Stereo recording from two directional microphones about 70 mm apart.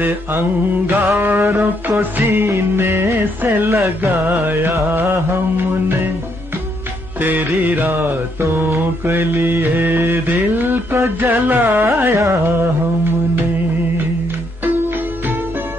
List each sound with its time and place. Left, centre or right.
0.0 s mantra: right
4.3 s mantra: right
7.2 s mantra: right